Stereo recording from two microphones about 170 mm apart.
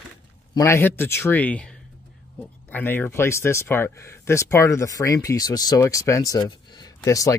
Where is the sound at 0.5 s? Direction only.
15° left (ahead or behind).